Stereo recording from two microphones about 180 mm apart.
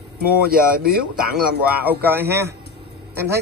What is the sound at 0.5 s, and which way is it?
Speech, 55° right (ahead or behind).